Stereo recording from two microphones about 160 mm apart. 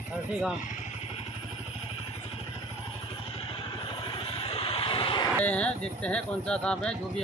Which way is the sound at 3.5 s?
30° left (ahead or behind).